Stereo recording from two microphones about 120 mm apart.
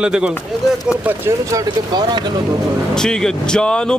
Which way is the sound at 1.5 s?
35° right (ahead or behind).